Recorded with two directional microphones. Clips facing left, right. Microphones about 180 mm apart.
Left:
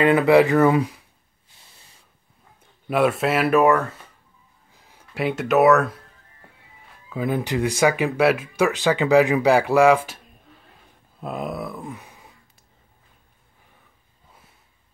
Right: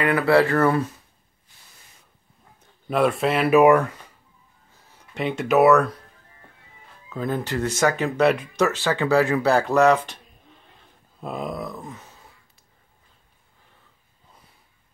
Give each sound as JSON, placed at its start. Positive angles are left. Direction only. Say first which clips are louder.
{"t": 0.0, "sound": "speech", "louder": "left 3 dB", "side_deg": 20}
{"t": 2.9, "sound": "speech", "louder": "left 1 dB", "side_deg": 5}
{"t": 3.5, "sound": "speech", "louder": "right 4 dB", "side_deg": -15}
{"t": 4.7, "sound": "a sound", "louder": "left 1 dB", "side_deg": 15}
{"t": 5.1, "sound": "speech", "louder": "even", "side_deg": 0}
{"t": 7.1, "sound": "speech", "louder": "left 2 dB", "side_deg": 10}
{"t": 11.1, "sound": "a sound", "louder": "left 1 dB", "side_deg": 5}